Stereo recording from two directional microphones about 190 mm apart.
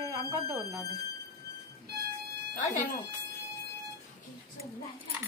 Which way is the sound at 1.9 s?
55° right (ahead or behind).